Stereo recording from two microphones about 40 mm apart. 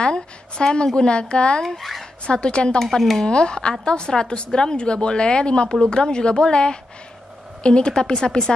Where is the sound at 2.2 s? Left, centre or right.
Left.